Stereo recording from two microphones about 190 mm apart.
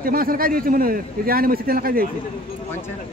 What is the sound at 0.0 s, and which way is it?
A man's voice, 50° right (ahead or behind).